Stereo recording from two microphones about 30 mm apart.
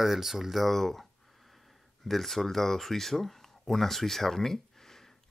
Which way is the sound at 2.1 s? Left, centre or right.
Centre.